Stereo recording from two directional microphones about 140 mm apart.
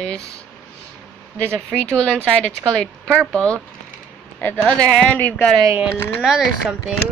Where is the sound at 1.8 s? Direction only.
10° left (ahead or behind).